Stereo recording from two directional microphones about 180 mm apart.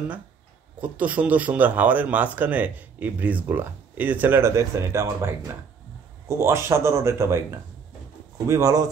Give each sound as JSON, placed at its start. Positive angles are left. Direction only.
{"t": 0.7, "sound": "speech", "side_deg": -5}